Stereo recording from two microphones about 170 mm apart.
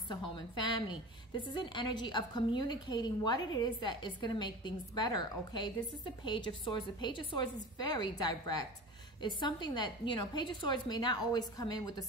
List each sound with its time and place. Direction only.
0.3 s a woman's voice: 25° left (ahead or behind)